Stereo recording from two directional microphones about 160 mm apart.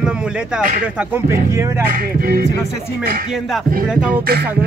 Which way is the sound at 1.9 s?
70° right (ahead or behind).